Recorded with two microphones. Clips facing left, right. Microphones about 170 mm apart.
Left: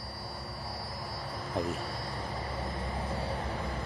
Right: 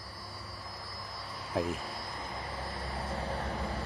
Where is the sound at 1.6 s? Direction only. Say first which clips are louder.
Right 1 dB; centre (ahead or behind).